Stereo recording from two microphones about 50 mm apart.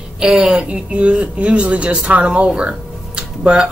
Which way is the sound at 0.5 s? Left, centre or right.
Right.